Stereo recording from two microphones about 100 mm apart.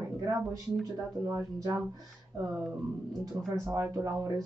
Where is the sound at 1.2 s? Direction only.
35° right (ahead or behind).